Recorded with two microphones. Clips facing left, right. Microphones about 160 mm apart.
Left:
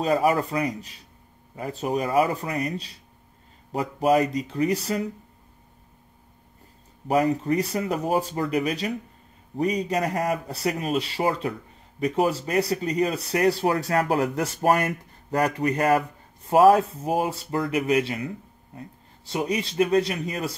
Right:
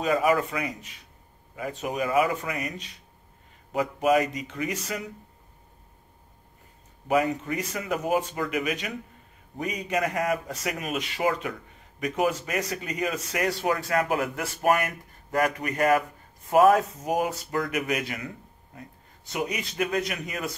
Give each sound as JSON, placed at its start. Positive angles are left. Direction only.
{"t": 0.0, "sound": "speech", "side_deg": 35}
{"t": 7.1, "sound": "speech", "side_deg": 35}